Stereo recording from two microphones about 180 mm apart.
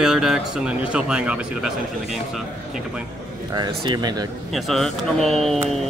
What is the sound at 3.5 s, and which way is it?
Speech, 25° right (ahead or behind).